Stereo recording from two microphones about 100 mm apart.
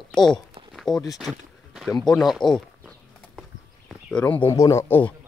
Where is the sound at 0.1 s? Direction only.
5° left (ahead or behind).